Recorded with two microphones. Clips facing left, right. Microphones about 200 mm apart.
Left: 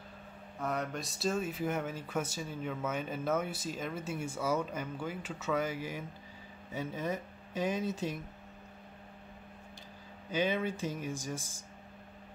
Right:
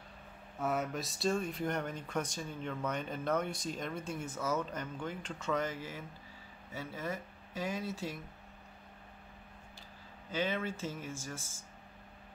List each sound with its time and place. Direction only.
0.6 s speech: 5° right (ahead or behind); by 8.2 s 20° left (ahead or behind)
10.3 s speech: 15° left (ahead or behind)